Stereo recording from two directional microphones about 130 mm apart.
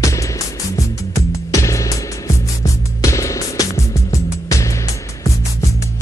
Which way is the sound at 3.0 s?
25° left (ahead or behind).